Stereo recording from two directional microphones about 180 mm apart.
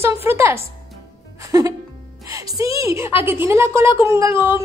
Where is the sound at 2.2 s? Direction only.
15° right (ahead or behind).